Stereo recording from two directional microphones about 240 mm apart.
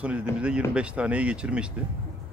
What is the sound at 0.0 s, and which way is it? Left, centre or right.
Speech, centre.